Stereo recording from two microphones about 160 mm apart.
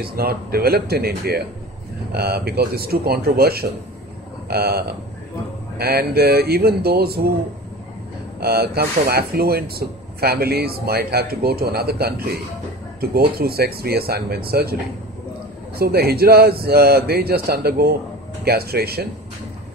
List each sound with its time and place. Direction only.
0.0 s speech: 70° right (ahead or behind)
8.4 s speech: 75° right (ahead or behind)
13.4 s speech: 75° right (ahead or behind)